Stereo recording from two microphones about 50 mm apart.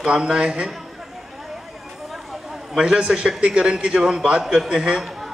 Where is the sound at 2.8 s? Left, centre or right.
Centre.